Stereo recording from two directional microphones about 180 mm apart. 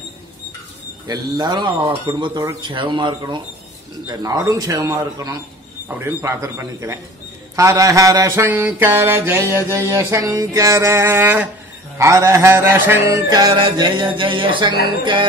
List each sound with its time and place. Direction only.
1.0 s mantra: 20° right (ahead or behind)